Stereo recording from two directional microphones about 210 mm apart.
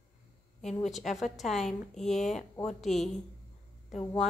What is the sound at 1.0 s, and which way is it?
Speech, 35° left (ahead or behind).